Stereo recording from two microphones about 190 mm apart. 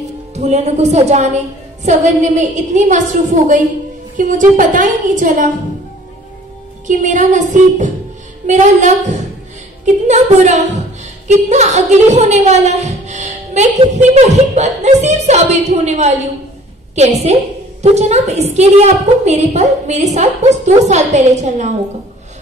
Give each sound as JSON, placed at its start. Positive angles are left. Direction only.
{"t": 0.3, "sound": "a woman's voice", "side_deg": -35}
{"t": 6.9, "sound": "a woman's voice", "side_deg": -40}